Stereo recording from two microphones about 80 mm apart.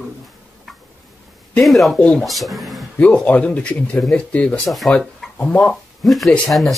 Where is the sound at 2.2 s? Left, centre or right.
Centre.